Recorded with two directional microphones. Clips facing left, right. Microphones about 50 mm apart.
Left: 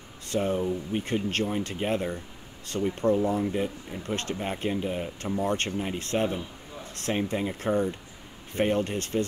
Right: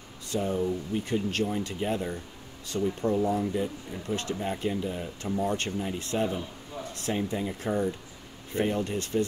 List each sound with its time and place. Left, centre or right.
0.3 s speech: left